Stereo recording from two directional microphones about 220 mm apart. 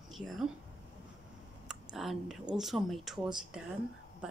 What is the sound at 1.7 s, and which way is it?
Speech, centre (ahead or behind).